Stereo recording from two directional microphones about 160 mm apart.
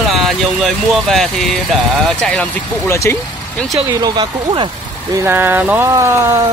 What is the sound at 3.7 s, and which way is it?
Speech, 25° right (ahead or behind).